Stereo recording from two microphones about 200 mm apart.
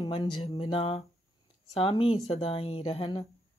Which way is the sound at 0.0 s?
20° left (ahead or behind).